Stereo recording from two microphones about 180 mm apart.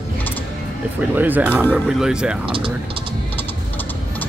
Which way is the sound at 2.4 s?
30° right (ahead or behind).